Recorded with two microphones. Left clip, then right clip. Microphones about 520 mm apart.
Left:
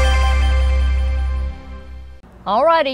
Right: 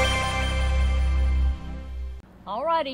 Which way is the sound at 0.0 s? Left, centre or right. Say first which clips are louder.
Left 3 dB; centre.